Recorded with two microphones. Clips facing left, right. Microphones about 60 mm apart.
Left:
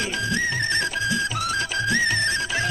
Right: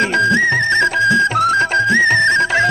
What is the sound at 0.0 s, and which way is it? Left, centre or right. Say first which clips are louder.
Music: right 11 dB; right.